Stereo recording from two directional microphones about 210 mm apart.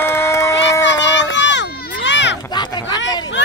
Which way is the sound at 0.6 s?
60° left (ahead or behind).